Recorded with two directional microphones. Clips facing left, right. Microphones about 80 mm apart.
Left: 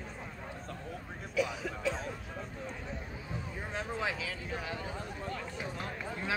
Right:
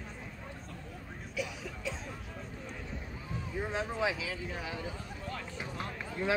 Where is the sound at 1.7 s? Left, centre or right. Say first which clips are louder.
Left 5 dB; left.